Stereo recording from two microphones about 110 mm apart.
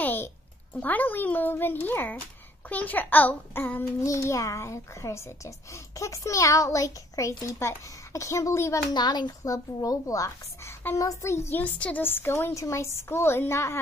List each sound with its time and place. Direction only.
0.0 s a sound: 20° left (ahead or behind)
0.7 s a child's voice: 15° left (ahead or behind)
8.9 s a child's voice: 40° left (ahead or behind); by 13.7 s 25° left (ahead or behind)